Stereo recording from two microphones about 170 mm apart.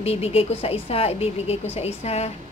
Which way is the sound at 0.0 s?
35° left (ahead or behind).